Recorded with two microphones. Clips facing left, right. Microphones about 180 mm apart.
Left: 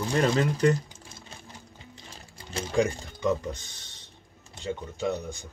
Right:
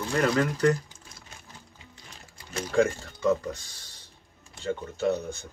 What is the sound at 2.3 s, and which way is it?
Speech, 25° left (ahead or behind).